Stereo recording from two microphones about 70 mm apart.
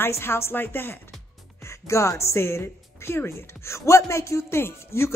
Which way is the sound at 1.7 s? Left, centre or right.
Left.